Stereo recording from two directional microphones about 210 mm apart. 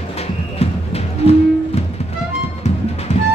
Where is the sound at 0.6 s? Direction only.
30° left (ahead or behind).